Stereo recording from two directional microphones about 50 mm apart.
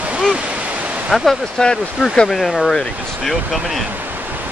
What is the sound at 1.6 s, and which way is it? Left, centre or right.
Speech, centre.